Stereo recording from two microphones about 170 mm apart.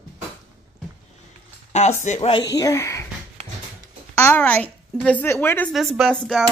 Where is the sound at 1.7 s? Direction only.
40° left (ahead or behind).